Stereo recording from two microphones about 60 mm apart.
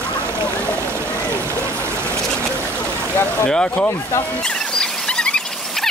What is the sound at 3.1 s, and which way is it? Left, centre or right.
Speech, left.